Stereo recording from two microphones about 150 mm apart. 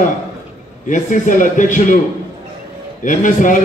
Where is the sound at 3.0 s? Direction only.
60° left (ahead or behind).